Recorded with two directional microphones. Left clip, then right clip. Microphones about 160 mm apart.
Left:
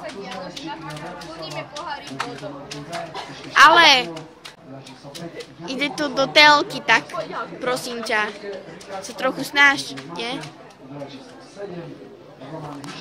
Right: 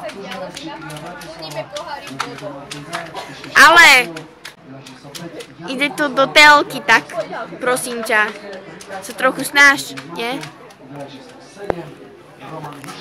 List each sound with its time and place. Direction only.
3.5 s a woman's voice: centre (ahead or behind)
5.7 s a woman's voice: 15° right (ahead or behind)